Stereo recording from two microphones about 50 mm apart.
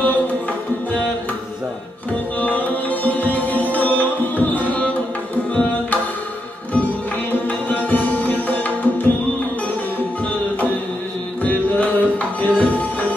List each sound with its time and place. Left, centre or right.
2.4 s music: left
5.5 s tabla: left
7.4 s tabla: left
11.4 s tabla: left